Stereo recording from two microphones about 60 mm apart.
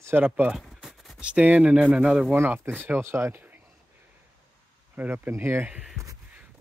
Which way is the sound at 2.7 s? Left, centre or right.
Right.